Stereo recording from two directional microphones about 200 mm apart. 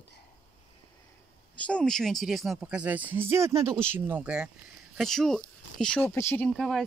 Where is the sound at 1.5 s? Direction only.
5° left (ahead or behind).